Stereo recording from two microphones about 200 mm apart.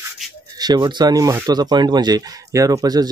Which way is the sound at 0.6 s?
20° right (ahead or behind).